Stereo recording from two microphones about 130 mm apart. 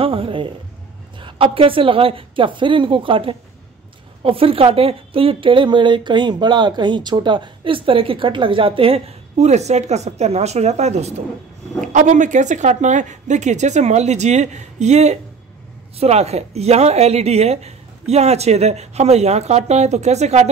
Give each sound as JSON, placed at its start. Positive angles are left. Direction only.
{"t": 0.0, "sound": "a woman's voice", "side_deg": -45}
{"t": 11.9, "sound": "a woman's voice", "side_deg": -70}